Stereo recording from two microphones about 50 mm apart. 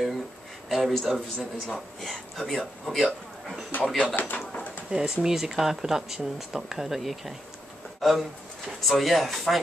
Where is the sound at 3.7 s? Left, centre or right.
Left.